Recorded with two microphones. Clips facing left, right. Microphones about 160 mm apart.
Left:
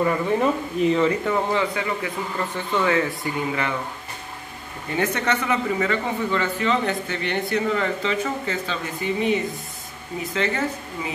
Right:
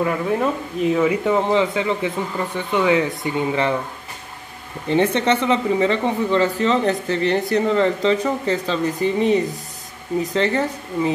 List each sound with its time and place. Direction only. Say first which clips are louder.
0.0 s speech: right 1 dB; centre (ahead or behind); by 3.7 s 25° right (ahead or behind)
4.8 s speech: right 6 dB; 30° right (ahead or behind)